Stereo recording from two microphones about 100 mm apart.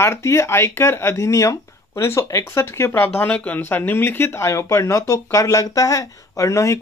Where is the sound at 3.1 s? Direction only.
15° left (ahead or behind).